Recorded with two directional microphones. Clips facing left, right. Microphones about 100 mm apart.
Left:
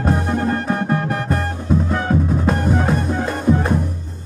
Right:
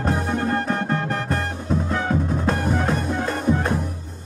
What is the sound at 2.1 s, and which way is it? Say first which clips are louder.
Music: left 5 dB; 5° left (ahead or behind).